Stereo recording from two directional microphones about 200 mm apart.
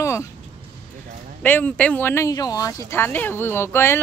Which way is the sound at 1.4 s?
10° left (ahead or behind).